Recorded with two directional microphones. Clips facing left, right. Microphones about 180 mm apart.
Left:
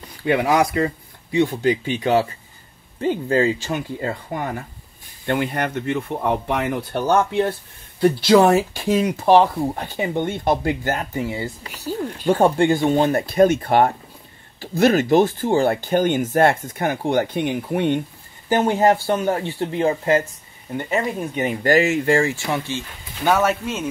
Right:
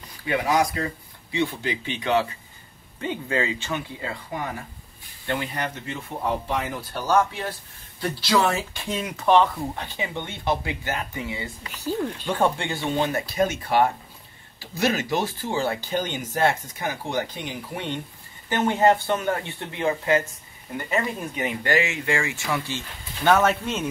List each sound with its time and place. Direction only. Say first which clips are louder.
0.2 s speech: left 5 dB; 60° left (ahead or behind)
1.3 s speech: left 8 dB; 45° left (ahead or behind)
9.2 s speech: left 2 dB; 35° left (ahead or behind)
11.7 s speech: right 2 dB; 10° left (ahead or behind)
12.3 s speech: left 10 dB; 40° left (ahead or behind)
18.5 s speech: left 3 dB; 35° left (ahead or behind)
21.4 s speech: left 7 dB; 40° left (ahead or behind)
23.2 s speech: left 1 dB; 5° left (ahead or behind)